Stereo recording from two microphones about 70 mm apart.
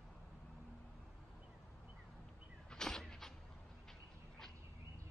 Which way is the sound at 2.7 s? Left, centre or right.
Centre.